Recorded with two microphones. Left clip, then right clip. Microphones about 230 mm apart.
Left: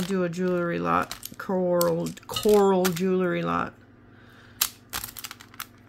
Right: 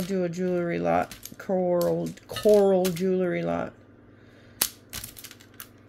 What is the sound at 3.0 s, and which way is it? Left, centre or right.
Speech, centre.